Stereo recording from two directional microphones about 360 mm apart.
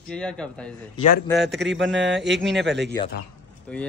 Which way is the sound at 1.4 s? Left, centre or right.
Right.